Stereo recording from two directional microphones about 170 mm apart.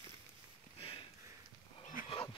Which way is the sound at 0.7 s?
35° left (ahead or behind).